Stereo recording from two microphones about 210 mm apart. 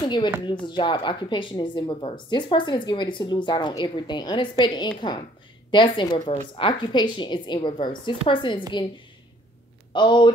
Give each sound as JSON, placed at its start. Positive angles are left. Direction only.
{"t": 0.0, "sound": "speech", "side_deg": 20}
{"t": 9.9, "sound": "speech", "side_deg": 20}